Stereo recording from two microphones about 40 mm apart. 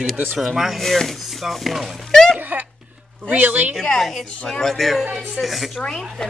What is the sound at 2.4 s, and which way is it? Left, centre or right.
Laughter, right.